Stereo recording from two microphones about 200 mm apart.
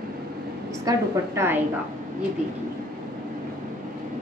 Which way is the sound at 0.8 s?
15° right (ahead or behind).